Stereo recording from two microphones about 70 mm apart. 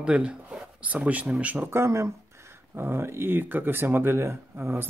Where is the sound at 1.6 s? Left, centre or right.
Right.